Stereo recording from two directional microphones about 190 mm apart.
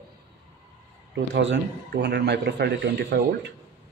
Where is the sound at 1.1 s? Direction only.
70° right (ahead or behind).